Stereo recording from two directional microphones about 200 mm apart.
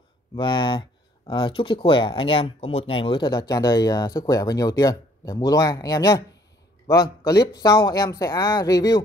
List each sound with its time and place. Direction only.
0.4 s speech: 25° left (ahead or behind)